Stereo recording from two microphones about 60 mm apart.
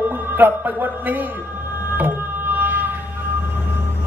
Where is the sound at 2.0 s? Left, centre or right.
Right.